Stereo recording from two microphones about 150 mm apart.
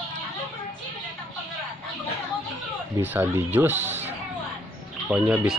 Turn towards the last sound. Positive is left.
turn(degrees=-5)  # may be behind; listen again after turning